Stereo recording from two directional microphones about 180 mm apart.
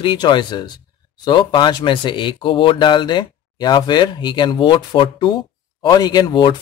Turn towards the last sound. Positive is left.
turn(degrees=25)  # may be behind; listen again after turning